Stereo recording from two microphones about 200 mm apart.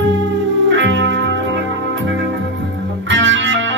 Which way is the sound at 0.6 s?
65° right (ahead or behind).